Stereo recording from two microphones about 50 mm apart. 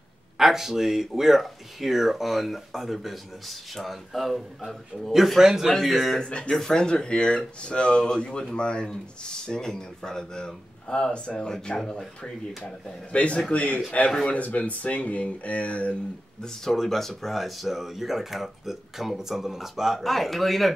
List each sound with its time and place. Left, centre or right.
0.4 s speech: centre
5.7 s speech: centre
6.1 s speech: centre
13.1 s speech: left
16.4 s speech: centre